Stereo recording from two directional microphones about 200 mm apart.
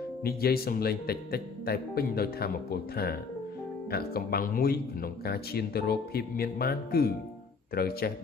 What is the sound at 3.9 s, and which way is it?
Speech, 50° left (ahead or behind).